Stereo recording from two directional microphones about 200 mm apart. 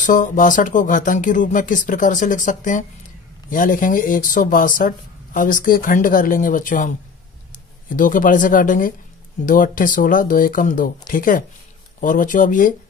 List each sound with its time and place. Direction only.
0.0 s speech: 40° left (ahead or behind)